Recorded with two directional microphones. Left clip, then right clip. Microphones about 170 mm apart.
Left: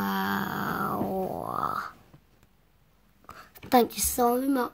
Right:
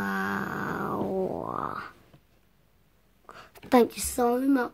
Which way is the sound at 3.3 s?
30° right (ahead or behind).